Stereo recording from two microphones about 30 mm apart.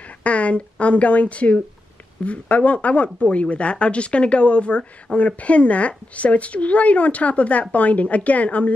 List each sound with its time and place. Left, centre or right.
0.2 s a woman's voice: left